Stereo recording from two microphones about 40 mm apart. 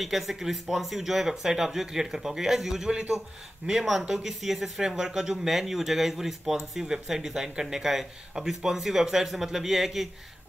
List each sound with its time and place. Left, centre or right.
0.0 s speech: centre
2.9 s speech: right
3.7 s speech: centre